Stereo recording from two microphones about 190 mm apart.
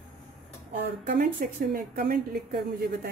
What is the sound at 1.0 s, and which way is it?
A woman's voice, 45° right (ahead or behind).